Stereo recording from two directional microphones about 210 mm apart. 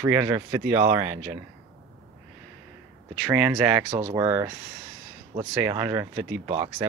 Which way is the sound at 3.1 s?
5° right (ahead or behind).